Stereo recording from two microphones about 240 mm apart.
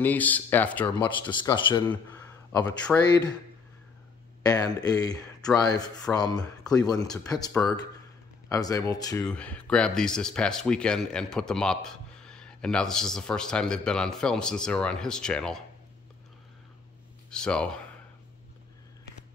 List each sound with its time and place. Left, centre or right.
0.0 s speech: centre
0.9 s a man's voice: centre
4.4 s speech: centre
9.3 s speech: centre
17.3 s speech: centre